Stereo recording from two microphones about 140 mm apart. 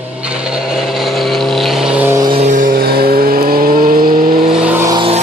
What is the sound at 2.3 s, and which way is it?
Vehicle, 65° right (ahead or behind).